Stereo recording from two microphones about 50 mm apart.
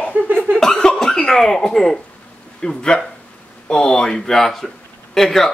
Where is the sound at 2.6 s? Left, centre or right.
Centre.